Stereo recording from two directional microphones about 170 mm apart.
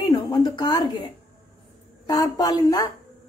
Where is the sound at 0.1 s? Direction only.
25° left (ahead or behind).